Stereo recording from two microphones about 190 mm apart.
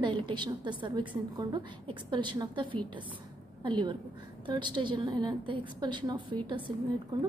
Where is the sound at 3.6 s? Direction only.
25° right (ahead or behind).